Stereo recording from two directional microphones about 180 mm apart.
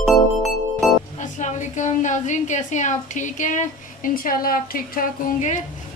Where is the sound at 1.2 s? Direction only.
45° left (ahead or behind).